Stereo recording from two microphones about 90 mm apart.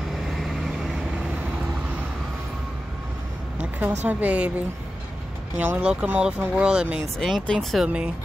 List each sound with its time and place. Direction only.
0.3 s vehicle: centre (ahead or behind)
3.8 s speech: 15° right (ahead or behind); by 7.8 s 5° left (ahead or behind)
7.8 s speech: 10° right (ahead or behind)